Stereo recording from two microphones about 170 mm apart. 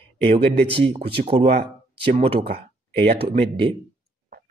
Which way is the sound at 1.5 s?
70° right (ahead or behind).